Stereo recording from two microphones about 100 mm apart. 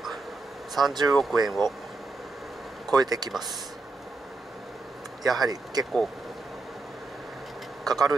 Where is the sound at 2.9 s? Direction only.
40° right (ahead or behind).